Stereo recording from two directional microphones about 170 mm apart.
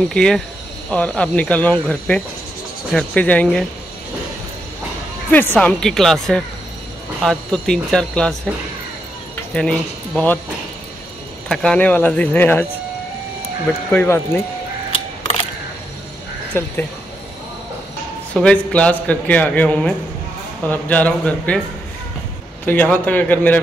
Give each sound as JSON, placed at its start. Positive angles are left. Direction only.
{"t": 0.1, "sound": "a man's voice", "side_deg": 5}
{"t": 5.3, "sound": "speech", "side_deg": 10}
{"t": 9.5, "sound": "speech", "side_deg": 5}
{"t": 11.4, "sound": "a man's voice", "side_deg": 5}
{"t": 13.9, "sound": "a man's voice", "side_deg": 15}
{"t": 14.9, "sound": "camera", "side_deg": 35}
{"t": 16.5, "sound": "a man's voice", "side_deg": 15}
{"t": 18.3, "sound": "a man's voice", "side_deg": 5}
{"t": 22.7, "sound": "a man's voice", "side_deg": 10}